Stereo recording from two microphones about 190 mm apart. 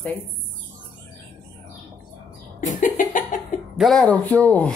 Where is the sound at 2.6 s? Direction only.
45° left (ahead or behind).